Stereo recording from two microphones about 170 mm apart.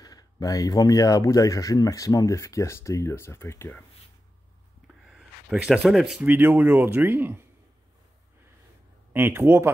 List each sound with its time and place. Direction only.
0.0 s speech: 20° left (ahead or behind)
4.8 s a sound: 5° right (ahead or behind)
5.9 s speech: centre (ahead or behind)
9.1 s speech: 10° right (ahead or behind)